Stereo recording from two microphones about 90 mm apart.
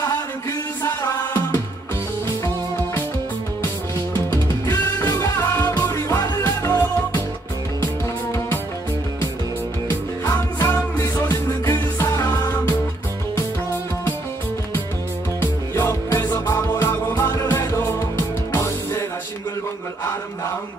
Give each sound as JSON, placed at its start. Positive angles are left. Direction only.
{"t": 0.8, "sound": "music", "side_deg": 25}
{"t": 4.1, "sound": "music", "side_deg": 35}
{"t": 9.8, "sound": "music", "side_deg": 25}
{"t": 15.4, "sound": "music", "side_deg": 30}